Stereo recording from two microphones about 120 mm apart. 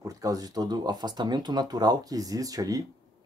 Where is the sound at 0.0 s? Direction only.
30° right (ahead or behind).